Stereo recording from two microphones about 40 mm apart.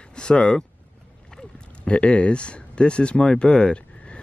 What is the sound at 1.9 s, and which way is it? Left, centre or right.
Speech, left.